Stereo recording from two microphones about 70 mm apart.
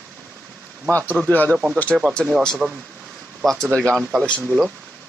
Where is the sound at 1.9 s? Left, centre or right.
Centre.